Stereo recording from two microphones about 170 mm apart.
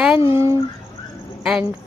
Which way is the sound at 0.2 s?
15° right (ahead or behind).